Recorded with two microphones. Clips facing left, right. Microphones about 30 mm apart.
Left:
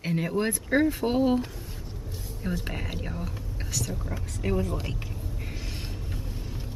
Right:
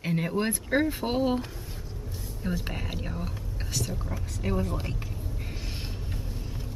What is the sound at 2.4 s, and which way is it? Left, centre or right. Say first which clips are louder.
Speech: even; centre.